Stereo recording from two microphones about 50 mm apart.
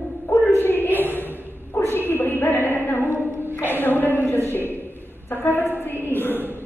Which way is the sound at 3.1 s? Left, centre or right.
Right.